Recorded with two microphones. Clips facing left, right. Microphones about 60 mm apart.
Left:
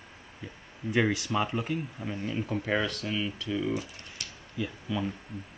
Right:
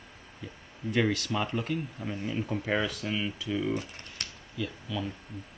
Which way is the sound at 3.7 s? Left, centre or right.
Right.